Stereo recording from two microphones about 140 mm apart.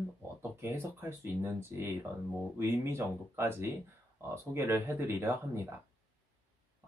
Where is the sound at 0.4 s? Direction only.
15° right (ahead or behind).